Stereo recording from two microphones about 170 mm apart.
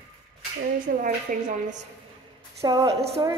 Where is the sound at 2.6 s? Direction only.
20° right (ahead or behind).